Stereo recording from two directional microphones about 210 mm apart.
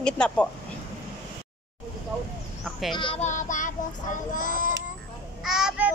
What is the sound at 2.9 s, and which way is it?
Child singing, 25° left (ahead or behind).